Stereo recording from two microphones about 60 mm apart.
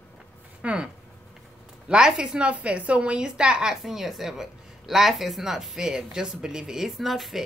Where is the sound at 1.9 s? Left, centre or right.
Centre.